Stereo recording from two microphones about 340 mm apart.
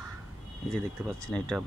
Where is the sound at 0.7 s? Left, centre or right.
Centre.